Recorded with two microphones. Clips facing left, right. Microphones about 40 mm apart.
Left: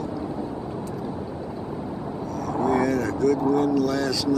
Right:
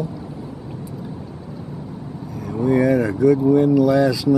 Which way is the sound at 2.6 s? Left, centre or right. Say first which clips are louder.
Right 6 dB; centre.